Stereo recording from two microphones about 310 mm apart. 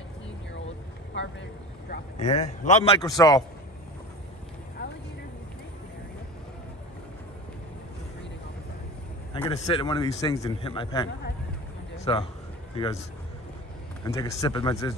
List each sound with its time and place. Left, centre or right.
1.9 s a man's voice: left
9.3 s a man's voice: centre
14.0 s a man's voice: centre